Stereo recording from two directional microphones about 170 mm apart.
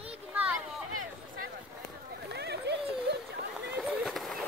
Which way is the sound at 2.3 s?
75° right (ahead or behind).